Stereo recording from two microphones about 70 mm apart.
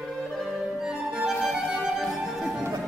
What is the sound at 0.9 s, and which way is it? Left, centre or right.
Music, centre.